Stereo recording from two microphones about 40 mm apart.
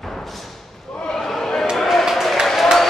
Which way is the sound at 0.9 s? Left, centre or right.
Centre.